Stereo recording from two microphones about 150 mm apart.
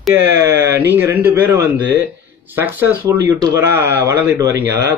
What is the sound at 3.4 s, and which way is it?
Speech, 25° right (ahead or behind).